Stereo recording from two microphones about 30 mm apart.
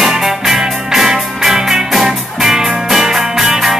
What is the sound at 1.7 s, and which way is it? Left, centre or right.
Music, centre.